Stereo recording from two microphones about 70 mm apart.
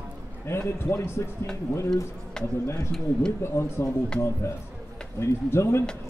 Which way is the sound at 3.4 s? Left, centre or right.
Left.